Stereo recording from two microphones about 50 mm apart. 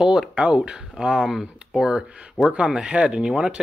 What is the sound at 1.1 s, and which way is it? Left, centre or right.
A man's voice, centre.